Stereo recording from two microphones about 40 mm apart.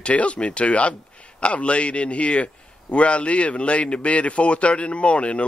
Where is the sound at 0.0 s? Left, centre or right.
Left.